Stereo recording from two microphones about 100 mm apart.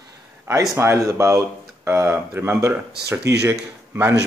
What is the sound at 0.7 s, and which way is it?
Speech, 25° right (ahead or behind).